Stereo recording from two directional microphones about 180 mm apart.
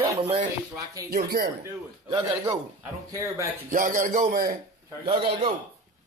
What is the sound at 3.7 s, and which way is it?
Speech, 50° right (ahead or behind).